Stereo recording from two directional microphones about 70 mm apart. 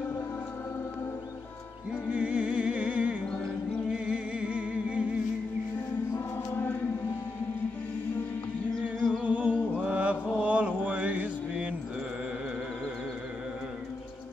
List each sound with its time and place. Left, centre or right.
2.0 s music: centre
6.1 s choir: left
8.8 s music: centre
9.8 s mantra: centre